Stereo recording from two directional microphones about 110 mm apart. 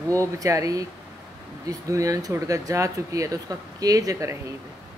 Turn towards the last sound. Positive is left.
turn(degrees=-30)  # may be behind; listen again after turning